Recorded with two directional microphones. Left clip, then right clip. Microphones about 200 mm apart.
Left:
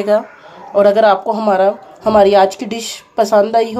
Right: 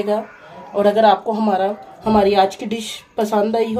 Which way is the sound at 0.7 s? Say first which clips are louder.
Left 4 dB; 10° left (ahead or behind).